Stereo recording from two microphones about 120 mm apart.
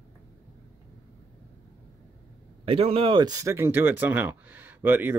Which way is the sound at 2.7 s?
50° right (ahead or behind).